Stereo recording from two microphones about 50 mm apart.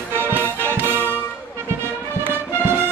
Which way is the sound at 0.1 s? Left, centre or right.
Right.